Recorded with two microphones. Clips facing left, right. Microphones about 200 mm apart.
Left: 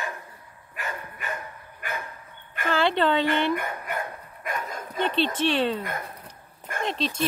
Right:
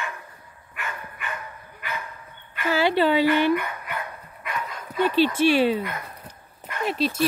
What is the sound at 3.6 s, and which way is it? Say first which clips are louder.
Dog: even; 45° left (ahead or behind).